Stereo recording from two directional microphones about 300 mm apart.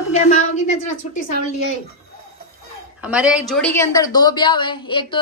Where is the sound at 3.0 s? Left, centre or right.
Centre.